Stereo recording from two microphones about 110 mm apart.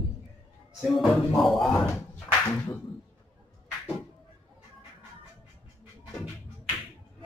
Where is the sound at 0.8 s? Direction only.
Centre (ahead or behind).